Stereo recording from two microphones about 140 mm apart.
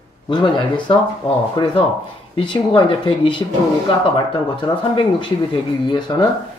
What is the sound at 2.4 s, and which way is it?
Speech, 40° left (ahead or behind).